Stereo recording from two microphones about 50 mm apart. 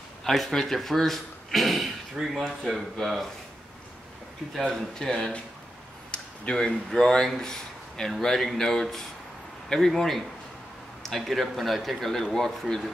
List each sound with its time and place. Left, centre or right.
0.2 s speech: centre
4.6 s speech: centre
6.1 s a sound: centre
6.9 s speech: centre